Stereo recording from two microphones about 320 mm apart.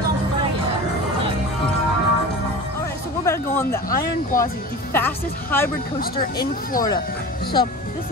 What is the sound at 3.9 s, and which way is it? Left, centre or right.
Speech, left.